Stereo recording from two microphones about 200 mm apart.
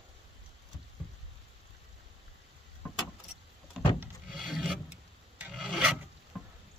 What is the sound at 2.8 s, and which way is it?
Vehicle, 10° left (ahead or behind).